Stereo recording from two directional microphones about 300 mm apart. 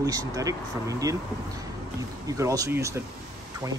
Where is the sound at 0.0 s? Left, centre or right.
Centre.